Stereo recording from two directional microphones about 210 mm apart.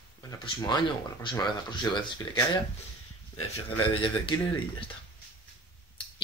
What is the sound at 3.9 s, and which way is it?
Speech, 20° left (ahead or behind).